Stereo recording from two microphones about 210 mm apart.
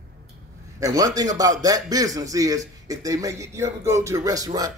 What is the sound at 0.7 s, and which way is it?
A man's voice, 15° right (ahead or behind).